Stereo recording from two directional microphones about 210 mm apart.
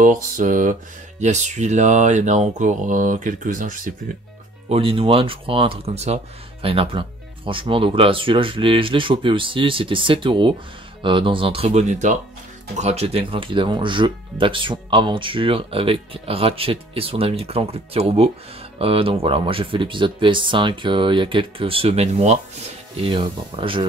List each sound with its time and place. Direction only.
0.0 s speech: 40° right (ahead or behind)
4.6 s speech: 25° right (ahead or behind)